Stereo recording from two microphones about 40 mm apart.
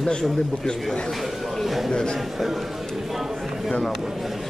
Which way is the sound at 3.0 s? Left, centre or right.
Centre.